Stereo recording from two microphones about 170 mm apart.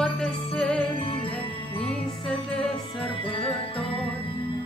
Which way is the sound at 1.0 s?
30° left (ahead or behind).